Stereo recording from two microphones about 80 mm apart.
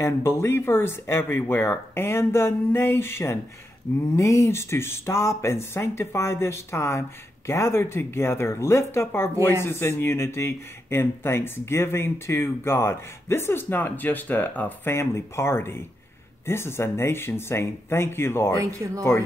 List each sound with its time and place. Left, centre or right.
0.0 s speech: left
15.0 s speech: left
18.6 s speech: right